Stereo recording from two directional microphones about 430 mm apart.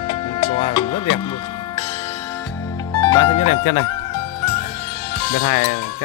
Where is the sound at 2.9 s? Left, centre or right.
Centre.